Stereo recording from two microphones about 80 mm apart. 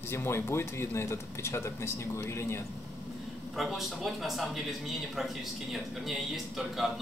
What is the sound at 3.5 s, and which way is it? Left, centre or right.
Speech, centre.